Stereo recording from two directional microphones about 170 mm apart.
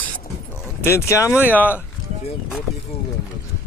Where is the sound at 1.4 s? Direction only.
10° right (ahead or behind).